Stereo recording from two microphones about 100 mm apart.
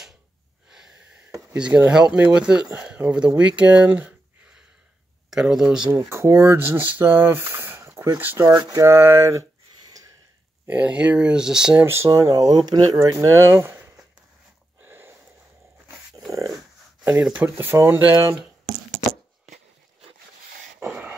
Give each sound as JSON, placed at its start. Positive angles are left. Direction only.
{"t": 0.7, "sound": "wheeze", "side_deg": -5}
{"t": 1.5, "sound": "speech", "side_deg": -10}
{"t": 5.3, "sound": "speech", "side_deg": -5}
{"t": 5.9, "sound": "speech", "side_deg": -25}
{"t": 8.5, "sound": "speech", "side_deg": -40}
{"t": 10.7, "sound": "speech", "side_deg": -10}
{"t": 11.7, "sound": "speech", "side_deg": -25}
{"t": 14.8, "sound": "a sound", "side_deg": -20}
{"t": 16.3, "sound": "dog", "side_deg": -35}
{"t": 17.2, "sound": "speech", "side_deg": -15}
{"t": 20.8, "sound": "a sound", "side_deg": -15}